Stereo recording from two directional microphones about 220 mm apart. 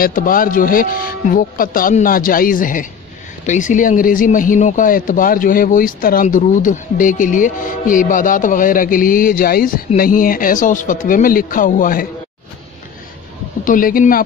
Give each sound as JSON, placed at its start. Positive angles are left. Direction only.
{"t": 0.0, "sound": "speech", "side_deg": 40}
{"t": 13.7, "sound": "speech", "side_deg": 40}